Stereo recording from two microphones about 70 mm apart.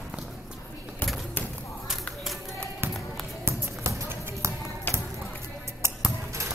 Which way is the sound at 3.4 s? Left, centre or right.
Right.